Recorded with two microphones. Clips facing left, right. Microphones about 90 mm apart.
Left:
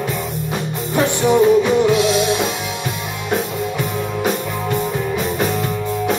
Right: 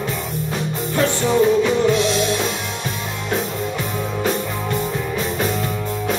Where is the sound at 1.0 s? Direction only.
15° left (ahead or behind).